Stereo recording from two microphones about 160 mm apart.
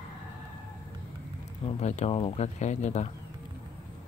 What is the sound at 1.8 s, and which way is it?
Speech, 45° left (ahead or behind).